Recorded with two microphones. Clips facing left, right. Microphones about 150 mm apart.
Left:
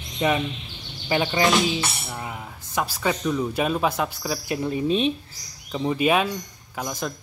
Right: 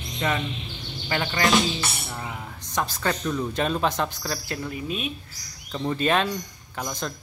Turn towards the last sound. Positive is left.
turn(degrees=5)  # may be behind; listen again after turning